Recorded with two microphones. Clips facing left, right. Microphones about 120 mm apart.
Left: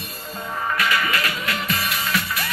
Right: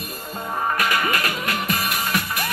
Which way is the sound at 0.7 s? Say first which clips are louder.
Left 1 dB; 45° right (ahead or behind).